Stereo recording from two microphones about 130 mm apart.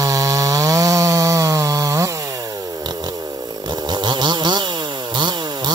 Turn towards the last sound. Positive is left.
turn(degrees=-35)  # may be behind; listen again after turning